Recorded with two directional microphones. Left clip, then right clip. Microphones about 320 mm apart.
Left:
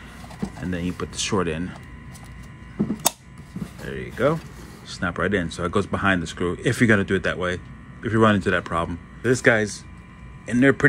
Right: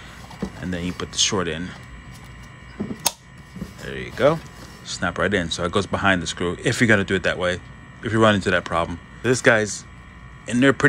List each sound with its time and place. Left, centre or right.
0.6 s speech: centre
3.8 s speech: centre